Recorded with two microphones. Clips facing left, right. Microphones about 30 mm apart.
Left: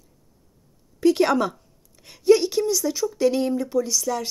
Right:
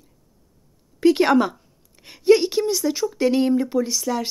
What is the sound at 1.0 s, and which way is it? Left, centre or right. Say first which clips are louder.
A woman's voice: right 2 dB; right.